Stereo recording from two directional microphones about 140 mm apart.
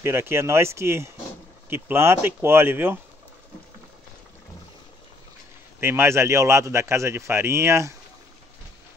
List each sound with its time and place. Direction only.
0.0 s a man's voice: 15° right (ahead or behind)
5.8 s a man's voice: 20° right (ahead or behind)